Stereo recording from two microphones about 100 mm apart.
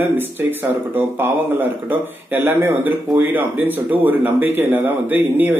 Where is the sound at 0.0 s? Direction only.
20° right (ahead or behind).